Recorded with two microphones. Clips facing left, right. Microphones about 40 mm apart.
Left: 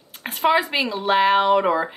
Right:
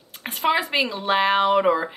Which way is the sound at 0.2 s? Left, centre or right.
Centre.